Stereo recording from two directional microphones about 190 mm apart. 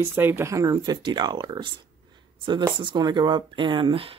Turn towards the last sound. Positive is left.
turn(degrees=-30)  # may be behind; listen again after turning